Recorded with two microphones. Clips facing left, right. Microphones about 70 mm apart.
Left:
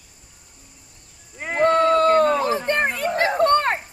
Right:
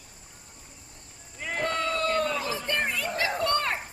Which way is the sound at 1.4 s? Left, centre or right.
Left.